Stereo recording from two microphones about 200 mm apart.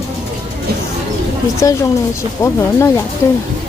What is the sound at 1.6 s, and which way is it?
Speech, 15° left (ahead or behind).